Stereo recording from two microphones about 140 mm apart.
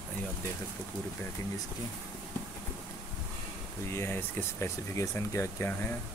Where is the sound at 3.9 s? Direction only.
15° left (ahead or behind).